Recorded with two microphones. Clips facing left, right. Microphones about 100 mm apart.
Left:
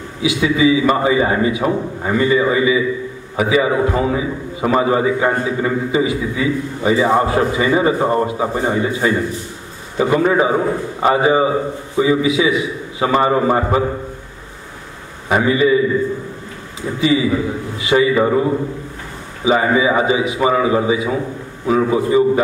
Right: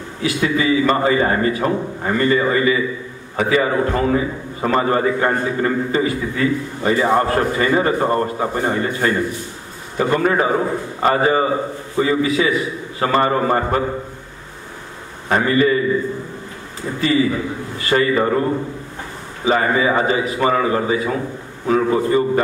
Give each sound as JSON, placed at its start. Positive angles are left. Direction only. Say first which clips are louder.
{"t": 0.2, "sound": "a man's voice", "louder": "left 4 dB", "side_deg": 5}
{"t": 15.2, "sound": "a man's voice", "louder": "left 1 dB", "side_deg": 10}
{"t": 17.0, "sound": "a man's voice", "louder": "left 2 dB", "side_deg": 10}